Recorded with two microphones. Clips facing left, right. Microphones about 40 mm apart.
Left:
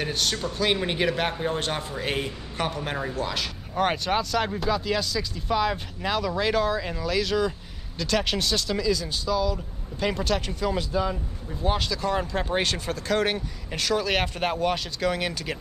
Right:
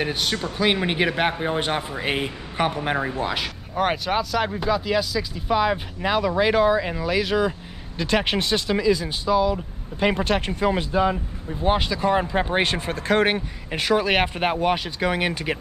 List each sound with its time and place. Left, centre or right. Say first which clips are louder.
0.0 s speech: right 3 dB; centre
3.7 s speech: right 2 dB; centre; by 15.5 s right